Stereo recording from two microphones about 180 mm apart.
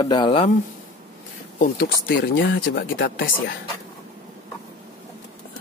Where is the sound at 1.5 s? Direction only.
50° left (ahead or behind); by 3.3 s 70° left (ahead or behind).